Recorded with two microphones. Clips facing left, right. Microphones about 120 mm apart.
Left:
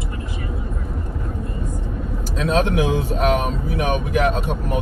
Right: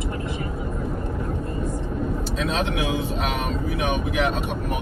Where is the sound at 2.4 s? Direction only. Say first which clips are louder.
Left 7 dB; 40° left (ahead or behind).